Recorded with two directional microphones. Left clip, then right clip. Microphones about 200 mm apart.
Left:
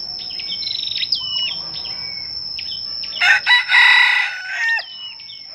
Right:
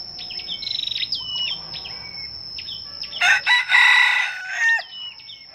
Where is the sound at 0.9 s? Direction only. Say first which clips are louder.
Left 4 dB; 15° left (ahead or behind).